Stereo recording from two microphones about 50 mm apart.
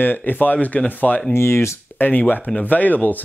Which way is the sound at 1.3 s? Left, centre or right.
Left.